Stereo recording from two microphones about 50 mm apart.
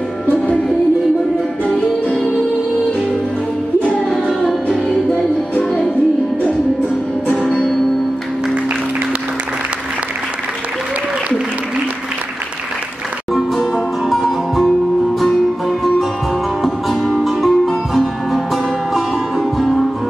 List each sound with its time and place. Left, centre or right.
5.6 s music: centre
14.0 s music: centre
16.6 s music: centre